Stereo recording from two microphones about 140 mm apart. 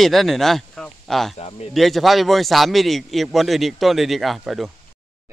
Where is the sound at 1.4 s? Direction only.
45° left (ahead or behind).